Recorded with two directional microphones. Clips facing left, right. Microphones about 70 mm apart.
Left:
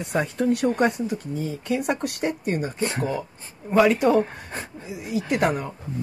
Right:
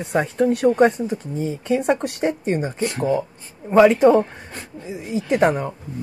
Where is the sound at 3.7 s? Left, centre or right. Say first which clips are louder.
Right 5 dB; right.